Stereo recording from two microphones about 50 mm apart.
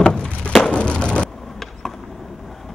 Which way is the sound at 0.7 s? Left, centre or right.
Left.